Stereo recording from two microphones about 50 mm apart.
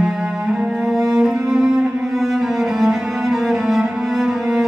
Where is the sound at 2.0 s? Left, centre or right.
Centre.